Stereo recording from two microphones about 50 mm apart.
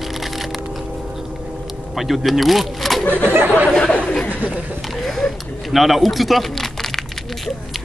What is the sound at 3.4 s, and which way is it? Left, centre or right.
Speech, right.